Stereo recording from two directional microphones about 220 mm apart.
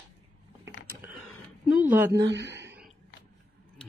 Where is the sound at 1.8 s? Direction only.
10° right (ahead or behind).